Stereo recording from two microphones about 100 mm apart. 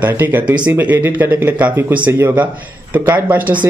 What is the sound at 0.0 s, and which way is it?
Speech, 20° right (ahead or behind).